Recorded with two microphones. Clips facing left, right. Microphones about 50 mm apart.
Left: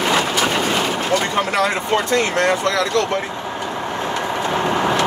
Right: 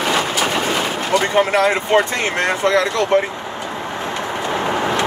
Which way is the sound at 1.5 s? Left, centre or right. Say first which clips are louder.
Right 3 dB; right.